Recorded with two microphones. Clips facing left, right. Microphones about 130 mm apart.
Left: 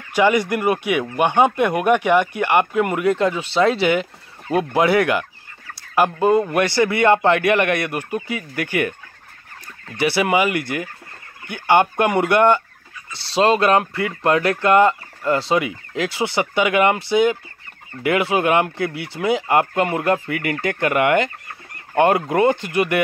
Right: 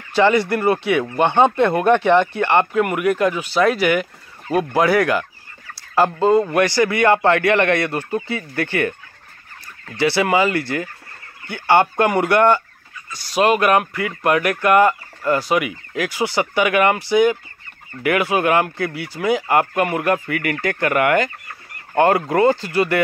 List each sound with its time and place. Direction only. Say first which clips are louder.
0.1 s speech: right 1 dB; 15° left (ahead or behind)
6.2 s speech: right 2 dB; 20° left (ahead or behind)
9.9 s speech: right 1 dB; 20° left (ahead or behind)